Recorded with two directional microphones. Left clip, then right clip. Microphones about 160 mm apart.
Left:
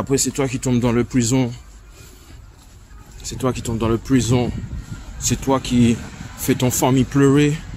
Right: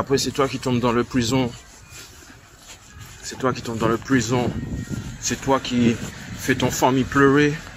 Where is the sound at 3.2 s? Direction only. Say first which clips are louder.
Even; 25° left (ahead or behind).